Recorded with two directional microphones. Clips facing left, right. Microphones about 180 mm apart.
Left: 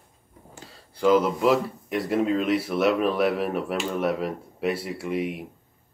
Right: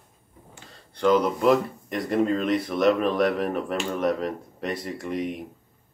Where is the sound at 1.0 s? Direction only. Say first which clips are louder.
Left 1 dB; 5° left (ahead or behind).